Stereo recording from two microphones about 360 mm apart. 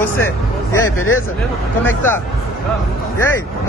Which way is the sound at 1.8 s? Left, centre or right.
Centre.